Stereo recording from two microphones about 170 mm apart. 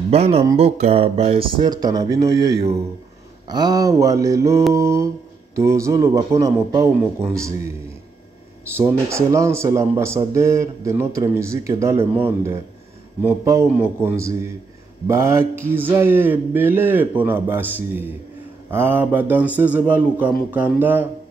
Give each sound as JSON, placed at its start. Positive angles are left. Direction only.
{"t": 0.1, "sound": "speech", "side_deg": -35}
{"t": 8.7, "sound": "speech", "side_deg": -15}